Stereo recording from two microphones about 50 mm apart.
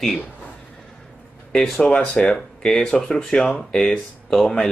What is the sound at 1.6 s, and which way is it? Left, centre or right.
Speech, centre.